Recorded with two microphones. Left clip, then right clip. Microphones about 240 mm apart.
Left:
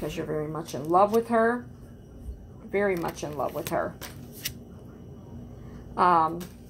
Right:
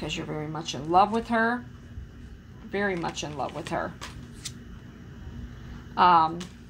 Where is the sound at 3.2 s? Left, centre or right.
Right.